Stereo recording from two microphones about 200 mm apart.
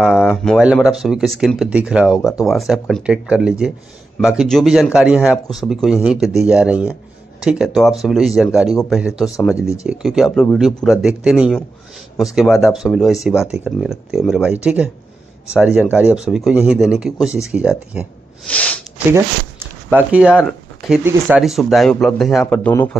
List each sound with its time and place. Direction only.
0.0 s speech: centre (ahead or behind)
2.1 s speech: 15° left (ahead or behind)
2.4 s speech: centre (ahead or behind)
18.5 s a sound: 5° left (ahead or behind)
19.1 s speech: 10° right (ahead or behind); by 22.8 s 5° left (ahead or behind)